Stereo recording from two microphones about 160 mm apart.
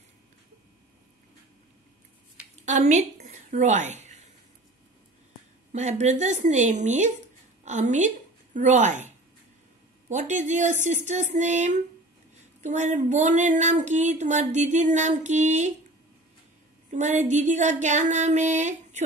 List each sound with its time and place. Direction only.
2.6 s speech: 45° right (ahead or behind)
5.7 s speech: 45° right (ahead or behind)
16.9 s speech: 45° right (ahead or behind)